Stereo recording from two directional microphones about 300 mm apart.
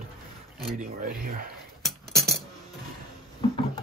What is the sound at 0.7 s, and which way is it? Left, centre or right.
Speech, right.